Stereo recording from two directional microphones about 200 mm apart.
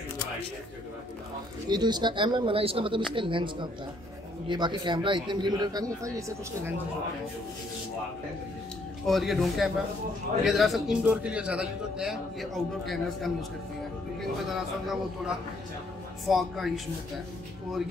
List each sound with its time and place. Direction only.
1.7 s a man's voice: 20° right (ahead or behind)
9.0 s a man's voice: centre (ahead or behind)
14.5 s a man's voice: centre (ahead or behind)